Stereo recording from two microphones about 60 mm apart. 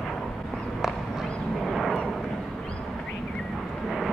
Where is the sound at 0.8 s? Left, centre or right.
Centre.